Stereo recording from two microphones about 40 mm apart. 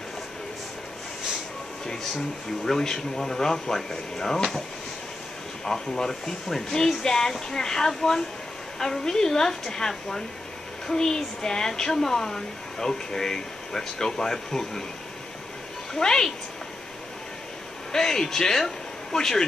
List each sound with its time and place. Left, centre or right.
2.6 s speech: centre
5.7 s speech: centre
15.9 s speech: centre
17.9 s speech: centre